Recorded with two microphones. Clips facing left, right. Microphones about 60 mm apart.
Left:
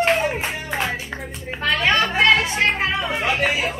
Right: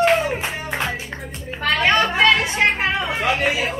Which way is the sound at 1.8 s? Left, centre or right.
Right.